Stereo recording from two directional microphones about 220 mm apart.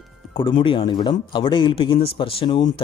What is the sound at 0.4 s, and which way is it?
Speech, 20° left (ahead or behind).